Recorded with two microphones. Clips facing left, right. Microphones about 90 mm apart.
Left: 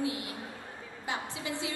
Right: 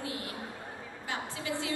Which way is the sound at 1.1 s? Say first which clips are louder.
Even; 20° left (ahead or behind).